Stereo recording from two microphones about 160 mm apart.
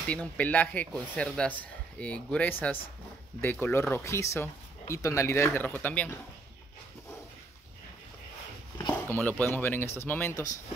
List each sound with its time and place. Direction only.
0.1 s speech: 10° left (ahead or behind)
8.9 s speech: 10° left (ahead or behind)